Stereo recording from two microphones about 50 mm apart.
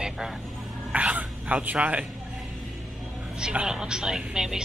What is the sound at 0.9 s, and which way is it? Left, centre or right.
Speech, right.